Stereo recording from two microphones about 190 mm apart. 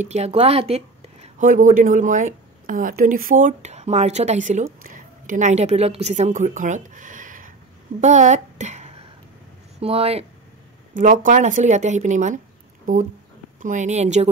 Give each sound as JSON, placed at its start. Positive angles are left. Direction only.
{"t": 0.0, "sound": "a woman's voice", "side_deg": -35}
{"t": 11.0, "sound": "speech", "side_deg": -45}